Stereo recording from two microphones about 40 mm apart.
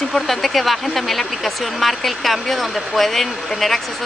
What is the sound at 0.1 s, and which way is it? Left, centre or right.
Speech, centre.